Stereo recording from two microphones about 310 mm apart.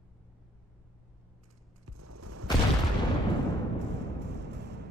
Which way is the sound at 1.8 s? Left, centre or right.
Right.